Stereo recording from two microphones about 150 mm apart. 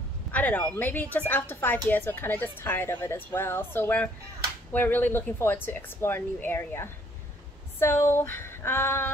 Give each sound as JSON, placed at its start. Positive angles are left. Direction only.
{"t": 0.3, "sound": "speech", "side_deg": 10}